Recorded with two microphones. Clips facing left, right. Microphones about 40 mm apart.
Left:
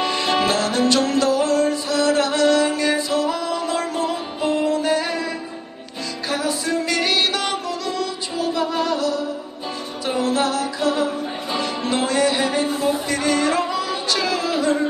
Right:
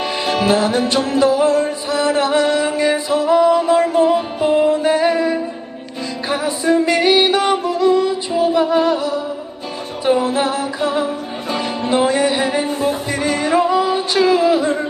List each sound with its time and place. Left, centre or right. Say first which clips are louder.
0.0 s music: right 1 dB; centre